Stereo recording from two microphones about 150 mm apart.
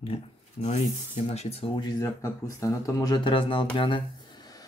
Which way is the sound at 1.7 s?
25° left (ahead or behind).